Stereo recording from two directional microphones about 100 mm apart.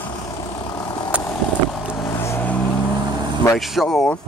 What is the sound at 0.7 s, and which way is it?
Vehicle, 45° left (ahead or behind).